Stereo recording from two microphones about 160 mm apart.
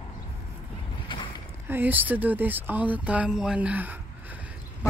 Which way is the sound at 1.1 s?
30° left (ahead or behind).